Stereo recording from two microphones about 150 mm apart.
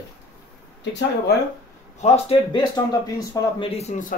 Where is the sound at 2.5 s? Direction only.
25° left (ahead or behind); by 4.1 s 55° left (ahead or behind).